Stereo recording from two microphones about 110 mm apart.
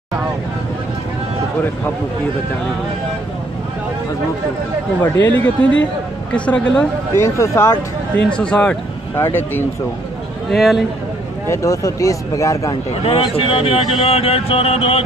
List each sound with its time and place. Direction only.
5.3 s speech: 15° left (ahead or behind)
7.2 s speech: 25° left (ahead or behind)
8.3 s speech: 10° left (ahead or behind)
9.1 s speech: 20° left (ahead or behind)
10.5 s a man's voice: centre (ahead or behind)
11.4 s speech: 30° left (ahead or behind)
13.0 s speech: 55° left (ahead or behind)